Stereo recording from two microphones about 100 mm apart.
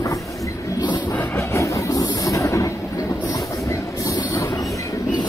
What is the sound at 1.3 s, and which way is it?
Train, 30° left (ahead or behind).